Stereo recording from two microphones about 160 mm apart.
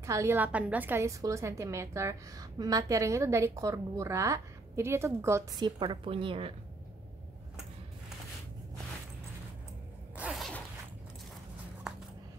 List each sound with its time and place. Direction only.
0.0 s a woman's voice: 20° right (ahead or behind); by 6.5 s 35° right (ahead or behind)
10.1 s zipper: 5° right (ahead or behind)